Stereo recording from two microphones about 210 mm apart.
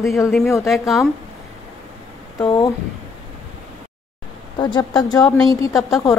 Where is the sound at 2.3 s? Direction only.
15° left (ahead or behind).